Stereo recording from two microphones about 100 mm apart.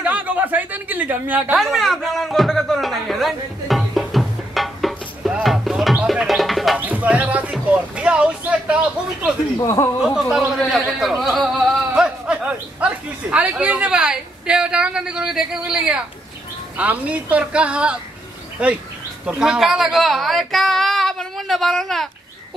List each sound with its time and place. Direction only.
0.0 s speech: 15° right (ahead or behind)
1.6 s a sound: centre (ahead or behind)
6.8 s music: 15° right (ahead or behind)
7.7 s speech: 10° right (ahead or behind)
9.6 s speech: 30° left (ahead or behind)
10.3 s a woman's voice: 5° right (ahead or behind)